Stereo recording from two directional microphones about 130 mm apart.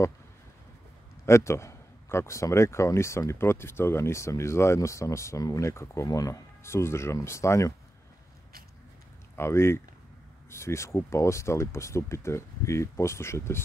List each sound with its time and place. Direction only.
1.2 s a man's voice: 20° left (ahead or behind)
9.4 s a man's voice: 20° left (ahead or behind)